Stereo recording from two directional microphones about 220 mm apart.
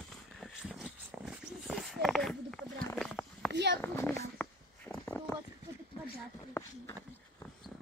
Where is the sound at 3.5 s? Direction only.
50° right (ahead or behind).